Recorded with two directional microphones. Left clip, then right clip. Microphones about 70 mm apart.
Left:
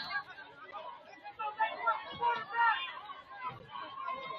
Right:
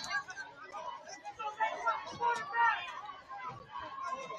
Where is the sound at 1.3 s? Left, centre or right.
Left.